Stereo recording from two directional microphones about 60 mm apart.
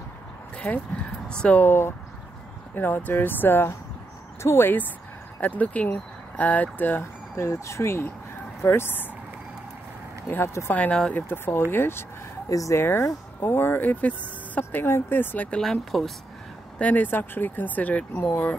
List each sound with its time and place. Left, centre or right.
0.6 s speech: left
1.6 s speech: left
5.4 s speech: left
7.0 s speech: left
10.7 s speech: left
11.1 s speech: left
12.4 s speech: left
12.7 s speech: left
14.6 s speech: left
15.6 s speech: centre
16.7 s speech: left